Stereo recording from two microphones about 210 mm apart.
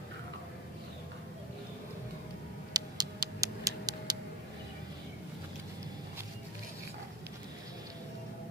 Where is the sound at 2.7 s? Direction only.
15° right (ahead or behind).